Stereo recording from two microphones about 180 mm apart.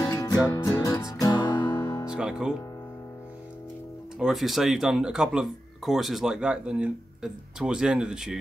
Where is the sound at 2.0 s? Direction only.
5° right (ahead or behind).